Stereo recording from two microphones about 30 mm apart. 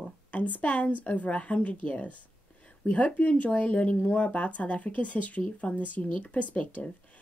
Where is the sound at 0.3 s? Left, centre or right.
Left.